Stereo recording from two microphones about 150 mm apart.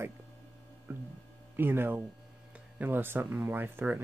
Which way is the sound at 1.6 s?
15° right (ahead or behind).